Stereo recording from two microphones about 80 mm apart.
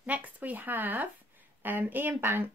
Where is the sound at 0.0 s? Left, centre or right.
Centre.